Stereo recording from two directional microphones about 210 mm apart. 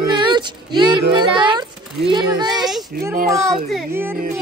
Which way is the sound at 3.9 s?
10° right (ahead or behind).